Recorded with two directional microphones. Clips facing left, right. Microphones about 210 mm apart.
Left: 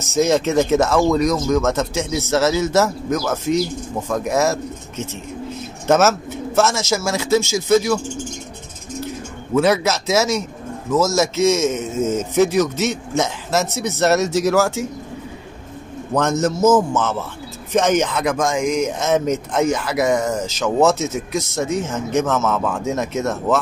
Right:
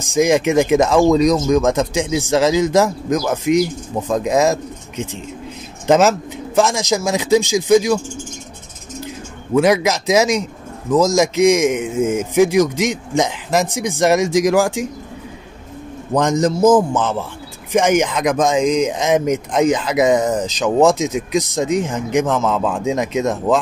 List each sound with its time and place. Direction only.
0.0 s speech: 15° right (ahead or behind)
9.0 s a man's voice: 15° right (ahead or behind)
16.1 s speech: 15° right (ahead or behind)